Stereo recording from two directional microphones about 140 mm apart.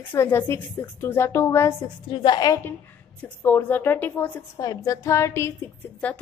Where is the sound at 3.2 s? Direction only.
15° left (ahead or behind).